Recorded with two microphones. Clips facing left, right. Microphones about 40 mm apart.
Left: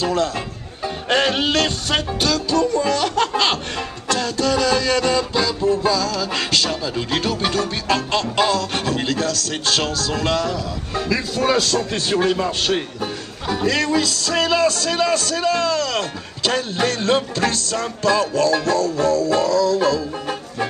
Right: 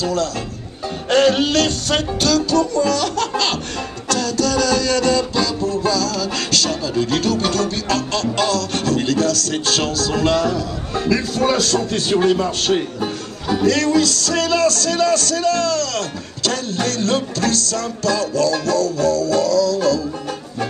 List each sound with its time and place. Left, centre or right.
0.0 s speech: left
1.0 s music: centre